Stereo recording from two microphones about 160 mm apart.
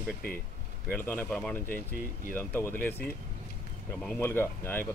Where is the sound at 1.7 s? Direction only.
65° left (ahead or behind).